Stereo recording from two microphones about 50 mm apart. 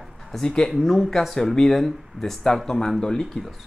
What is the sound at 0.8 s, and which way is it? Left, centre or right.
Speech, centre.